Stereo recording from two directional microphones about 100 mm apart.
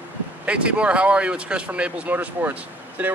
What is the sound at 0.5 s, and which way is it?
Speech, 10° right (ahead or behind).